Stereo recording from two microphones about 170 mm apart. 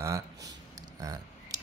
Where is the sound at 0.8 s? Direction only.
20° right (ahead or behind).